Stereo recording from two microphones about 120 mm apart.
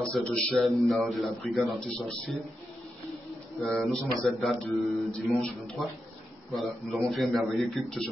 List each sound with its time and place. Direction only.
0.0 s speech: 5° left (ahead or behind)
3.6 s speech: centre (ahead or behind)